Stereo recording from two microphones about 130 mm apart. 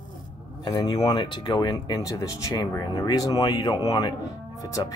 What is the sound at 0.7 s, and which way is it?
Speech, 30° left (ahead or behind).